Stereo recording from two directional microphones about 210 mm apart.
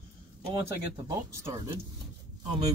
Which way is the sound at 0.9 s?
15° right (ahead or behind).